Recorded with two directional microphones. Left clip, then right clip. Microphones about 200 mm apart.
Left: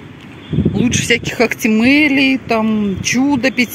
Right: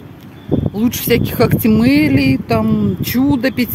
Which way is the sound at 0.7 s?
15° right (ahead or behind).